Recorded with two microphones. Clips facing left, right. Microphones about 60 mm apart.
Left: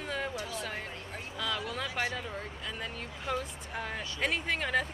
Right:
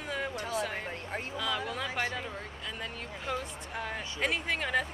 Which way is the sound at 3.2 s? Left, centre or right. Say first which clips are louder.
Left 1 dB; centre.